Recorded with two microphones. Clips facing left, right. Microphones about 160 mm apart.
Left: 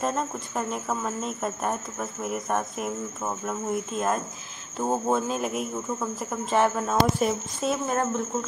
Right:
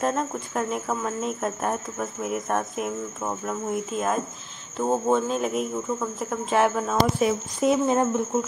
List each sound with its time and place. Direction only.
0.0 s speech: centre (ahead or behind)
7.6 s speech: 15° right (ahead or behind)